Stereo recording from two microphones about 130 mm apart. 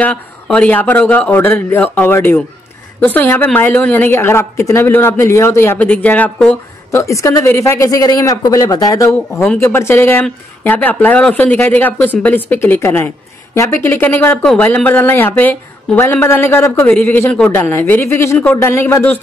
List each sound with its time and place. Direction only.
0.0 s speech: 10° left (ahead or behind)